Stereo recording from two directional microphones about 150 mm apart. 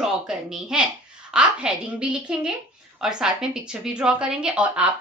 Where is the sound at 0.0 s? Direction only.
5° right (ahead or behind).